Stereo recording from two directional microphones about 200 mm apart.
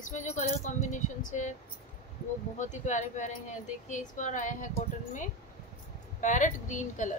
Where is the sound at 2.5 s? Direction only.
35° left (ahead or behind).